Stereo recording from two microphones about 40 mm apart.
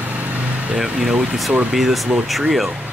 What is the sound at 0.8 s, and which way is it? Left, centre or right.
Speech, centre.